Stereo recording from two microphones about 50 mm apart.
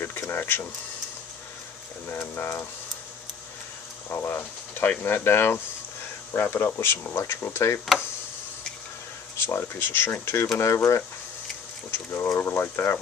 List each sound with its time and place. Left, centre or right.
0.0 s speech: left
2.0 s speech: left
4.1 s speech: left
9.5 s speech: left
10.6 s speech: left
11.9 s speech: left